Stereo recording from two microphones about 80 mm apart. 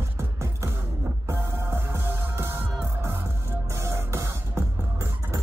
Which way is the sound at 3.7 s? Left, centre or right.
Right.